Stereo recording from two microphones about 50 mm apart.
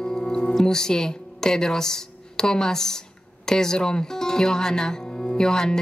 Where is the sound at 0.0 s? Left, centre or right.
Centre.